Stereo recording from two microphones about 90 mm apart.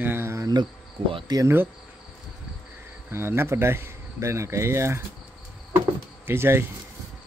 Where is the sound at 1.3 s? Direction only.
50° right (ahead or behind).